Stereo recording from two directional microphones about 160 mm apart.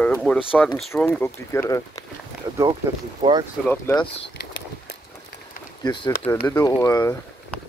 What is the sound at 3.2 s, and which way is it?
Speech, 30° right (ahead or behind).